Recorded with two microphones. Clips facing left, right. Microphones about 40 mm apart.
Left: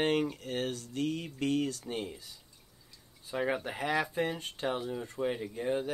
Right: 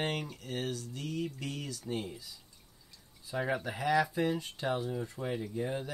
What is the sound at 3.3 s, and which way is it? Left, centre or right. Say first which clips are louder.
Speech: left 1 dB; left.